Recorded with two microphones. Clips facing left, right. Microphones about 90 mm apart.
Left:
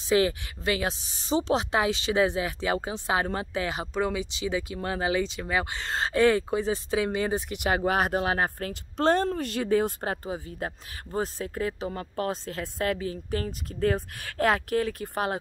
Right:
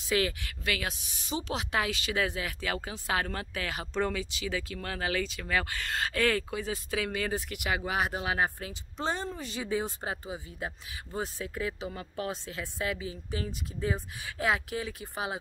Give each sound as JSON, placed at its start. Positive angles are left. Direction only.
{"t": 0.1, "sound": "speech", "side_deg": 25}
{"t": 7.7, "sound": "speech", "side_deg": 45}